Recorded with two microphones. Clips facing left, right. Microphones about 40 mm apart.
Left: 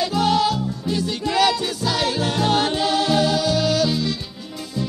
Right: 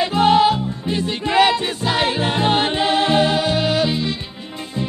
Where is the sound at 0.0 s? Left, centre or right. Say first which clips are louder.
Right 5 dB; right.